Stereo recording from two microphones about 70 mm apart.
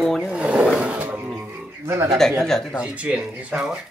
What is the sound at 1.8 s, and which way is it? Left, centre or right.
Speech, right.